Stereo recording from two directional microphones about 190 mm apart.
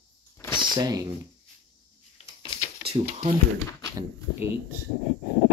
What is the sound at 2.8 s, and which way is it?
Speech, 35° right (ahead or behind).